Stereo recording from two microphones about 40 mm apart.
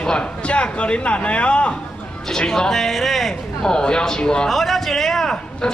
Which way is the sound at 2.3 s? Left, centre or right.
Centre.